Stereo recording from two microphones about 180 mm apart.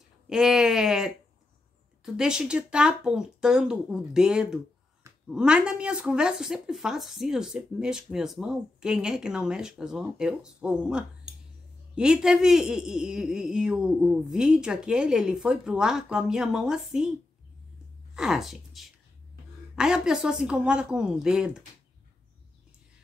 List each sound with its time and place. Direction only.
0.3 s speech: 5° right (ahead or behind)
2.1 s speech: 5° right (ahead or behind)
18.1 s speech: centre (ahead or behind)